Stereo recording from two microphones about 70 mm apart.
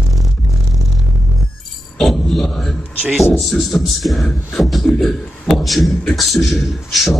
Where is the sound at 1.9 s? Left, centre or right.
Centre.